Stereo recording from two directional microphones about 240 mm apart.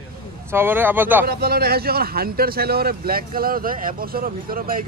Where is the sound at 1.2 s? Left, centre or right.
Right.